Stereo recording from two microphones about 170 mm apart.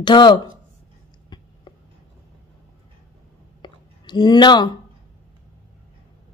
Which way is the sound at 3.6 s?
25° left (ahead or behind).